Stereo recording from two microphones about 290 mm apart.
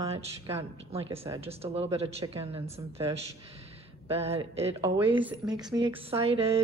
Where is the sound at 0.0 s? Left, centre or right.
Centre.